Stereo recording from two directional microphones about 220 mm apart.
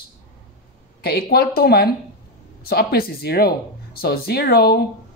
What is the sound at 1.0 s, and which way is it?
Speech, 45° left (ahead or behind).